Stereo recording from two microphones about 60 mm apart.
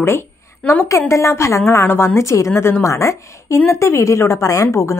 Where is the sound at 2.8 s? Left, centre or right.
Left.